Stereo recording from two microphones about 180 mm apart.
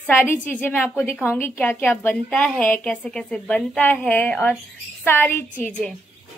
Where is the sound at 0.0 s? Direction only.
10° left (ahead or behind).